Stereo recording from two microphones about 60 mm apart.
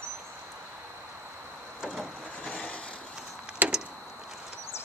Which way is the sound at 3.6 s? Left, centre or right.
Right.